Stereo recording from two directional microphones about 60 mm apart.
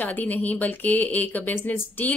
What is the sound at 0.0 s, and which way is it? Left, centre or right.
A woman's voice, left.